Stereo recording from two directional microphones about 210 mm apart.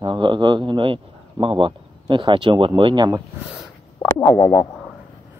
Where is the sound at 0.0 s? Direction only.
20° right (ahead or behind).